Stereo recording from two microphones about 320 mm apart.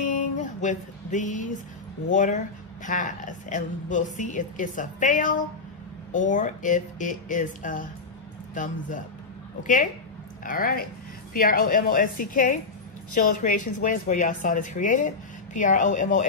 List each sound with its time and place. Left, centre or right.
0.0 s music: left
2.0 s speech: left
13.7 s speech: left